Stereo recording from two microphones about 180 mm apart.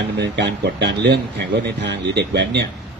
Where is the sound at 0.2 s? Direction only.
70° right (ahead or behind).